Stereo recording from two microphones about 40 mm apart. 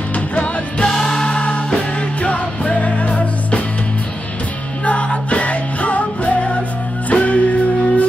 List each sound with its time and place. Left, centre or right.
0.1 s music: left
0.8 s music: centre; by 3.6 s left
4.8 s music: left